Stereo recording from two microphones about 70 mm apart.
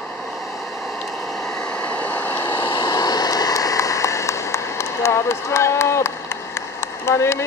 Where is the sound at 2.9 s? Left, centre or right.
Left.